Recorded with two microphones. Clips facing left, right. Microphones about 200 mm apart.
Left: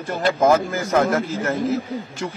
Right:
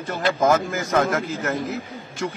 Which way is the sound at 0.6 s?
30° left (ahead or behind).